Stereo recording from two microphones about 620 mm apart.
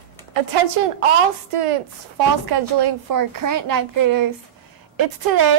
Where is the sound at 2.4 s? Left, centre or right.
Right.